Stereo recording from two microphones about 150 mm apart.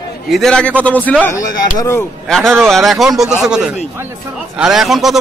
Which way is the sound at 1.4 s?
20° left (ahead or behind).